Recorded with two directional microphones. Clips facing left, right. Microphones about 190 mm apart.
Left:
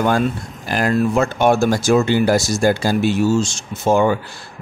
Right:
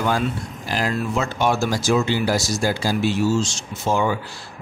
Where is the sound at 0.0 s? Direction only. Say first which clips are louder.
Left 5 dB; 55° left (ahead or behind).